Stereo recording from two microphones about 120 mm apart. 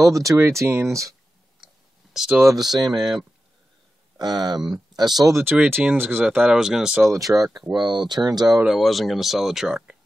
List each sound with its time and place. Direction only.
0.0 s speech: 25° right (ahead or behind)
2.1 s speech: 5° right (ahead or behind)
2.7 s speech: 35° right (ahead or behind)
3.0 s speech: centre (ahead or behind)
4.2 s speech: 35° right (ahead or behind)
5.3 s speech: 15° right (ahead or behind)
7.1 s speech: 30° right (ahead or behind)
7.7 s speech: 40° right (ahead or behind)
8.6 s speech: centre (ahead or behind)